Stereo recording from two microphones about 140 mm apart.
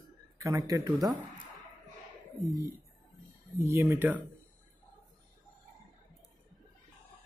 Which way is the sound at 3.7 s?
20° right (ahead or behind).